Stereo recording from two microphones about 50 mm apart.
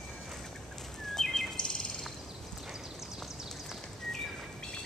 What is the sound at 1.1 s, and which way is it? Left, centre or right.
Bird, centre.